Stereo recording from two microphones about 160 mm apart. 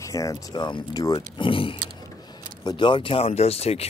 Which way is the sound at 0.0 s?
20° left (ahead or behind).